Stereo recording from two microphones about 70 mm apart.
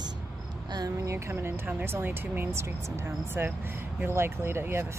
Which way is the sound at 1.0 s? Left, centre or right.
Right.